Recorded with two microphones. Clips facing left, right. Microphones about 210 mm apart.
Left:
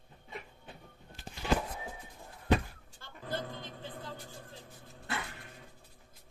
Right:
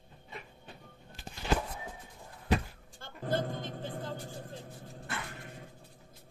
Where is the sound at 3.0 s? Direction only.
50° right (ahead or behind).